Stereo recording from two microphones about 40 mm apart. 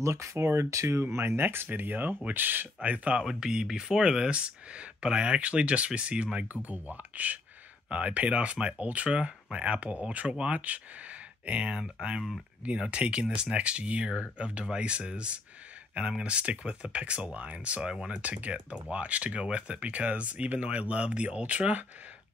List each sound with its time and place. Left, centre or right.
0.4 s speech: right
3.3 s speech: centre
6.6 s speech: right
7.9 s speech: right
10.2 s speech: right
10.5 s speech: right
17.8 s speech: right
18.2 s speech: right